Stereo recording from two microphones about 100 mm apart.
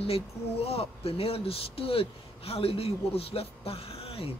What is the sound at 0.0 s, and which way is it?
Speech, 85° left.